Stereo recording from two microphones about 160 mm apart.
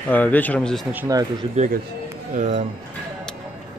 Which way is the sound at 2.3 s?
50° right (ahead or behind).